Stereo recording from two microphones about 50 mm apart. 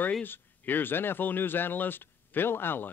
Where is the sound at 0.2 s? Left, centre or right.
Left.